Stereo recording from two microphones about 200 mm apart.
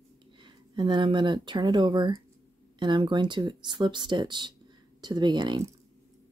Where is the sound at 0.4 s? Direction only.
25° right (ahead or behind).